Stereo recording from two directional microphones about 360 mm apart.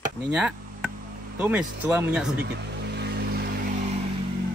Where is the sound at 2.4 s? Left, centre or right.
Right.